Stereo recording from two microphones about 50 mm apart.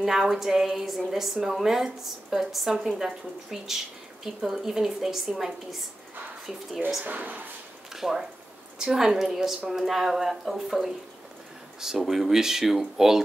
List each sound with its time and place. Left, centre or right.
0.0 s a woman's voice: centre
7.1 s speech: right
7.9 s a woman's voice: centre
12.0 s speech: centre